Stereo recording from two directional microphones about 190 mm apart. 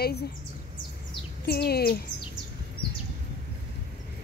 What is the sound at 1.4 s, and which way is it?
Speech, 55° left (ahead or behind).